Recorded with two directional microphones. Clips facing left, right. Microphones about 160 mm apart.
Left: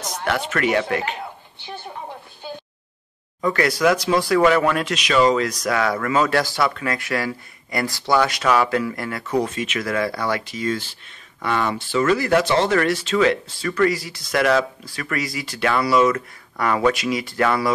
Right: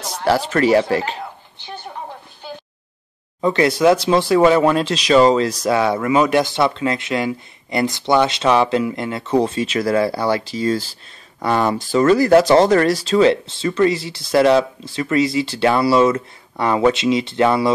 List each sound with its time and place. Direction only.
0.0 s speech: 30° right (ahead or behind)
3.3 s speech: 25° right (ahead or behind)